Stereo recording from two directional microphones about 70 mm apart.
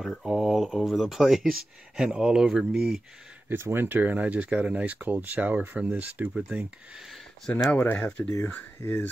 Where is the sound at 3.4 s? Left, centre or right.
Right; by 7.0 s centre.